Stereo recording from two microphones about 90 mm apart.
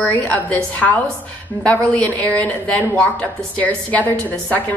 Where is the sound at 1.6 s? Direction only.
15° left (ahead or behind).